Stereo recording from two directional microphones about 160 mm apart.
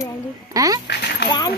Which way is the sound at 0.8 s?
90° left.